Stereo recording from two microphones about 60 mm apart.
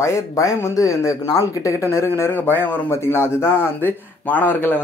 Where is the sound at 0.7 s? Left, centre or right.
Left.